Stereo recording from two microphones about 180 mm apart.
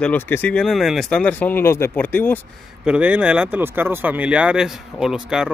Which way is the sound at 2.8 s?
5° right (ahead or behind).